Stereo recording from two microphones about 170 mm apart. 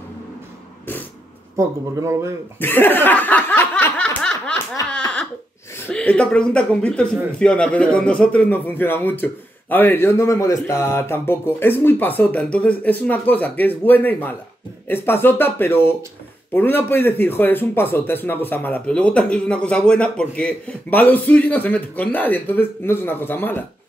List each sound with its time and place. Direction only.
1.6 s a man's voice: 15° right (ahead or behind)
2.6 s snicker: 10° left (ahead or behind)
4.8 s a sound: 5° left (ahead or behind)
5.9 s a man's voice: 5° left (ahead or behind)